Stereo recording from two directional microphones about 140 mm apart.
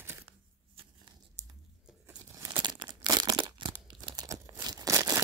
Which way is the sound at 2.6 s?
30° right (ahead or behind).